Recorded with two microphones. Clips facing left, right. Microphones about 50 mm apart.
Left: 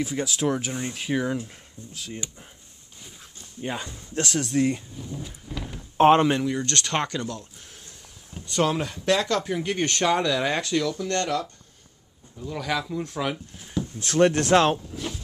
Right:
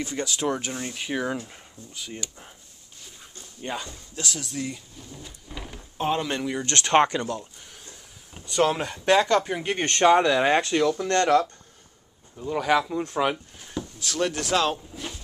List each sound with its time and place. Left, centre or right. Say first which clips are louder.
0.0 s speech: left 2 dB; centre
3.6 s speech: left 1 dB; centre
4.1 s speech: left 8 dB; left
4.9 s speech: left 6 dB; centre
5.5 s door: left 2 dB; centre
5.9 s speech: left 10 dB; left
6.4 s speech: left 2 dB; centre
6.7 s speech: right 6 dB; right
8.5 s speech: right 1 dB; centre; by 11.4 s right
12.4 s speech: right 6 dB; centre
13.6 s drawer open or close: left 3 dB; centre
13.9 s speech: left 7 dB; left